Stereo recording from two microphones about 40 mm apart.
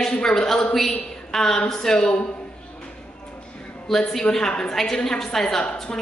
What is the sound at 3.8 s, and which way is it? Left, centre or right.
A woman's voice, centre.